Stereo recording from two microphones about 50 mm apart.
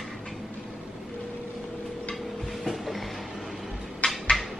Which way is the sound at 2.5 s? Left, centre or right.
Centre.